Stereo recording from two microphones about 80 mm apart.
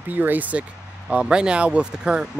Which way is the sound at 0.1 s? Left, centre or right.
Right.